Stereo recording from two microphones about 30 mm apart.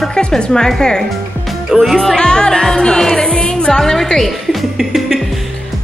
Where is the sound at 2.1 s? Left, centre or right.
Left.